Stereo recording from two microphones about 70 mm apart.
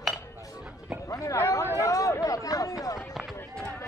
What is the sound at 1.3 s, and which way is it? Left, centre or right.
Chatter, left.